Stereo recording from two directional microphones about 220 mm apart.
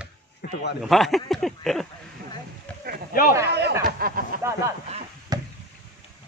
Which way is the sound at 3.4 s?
50° right (ahead or behind).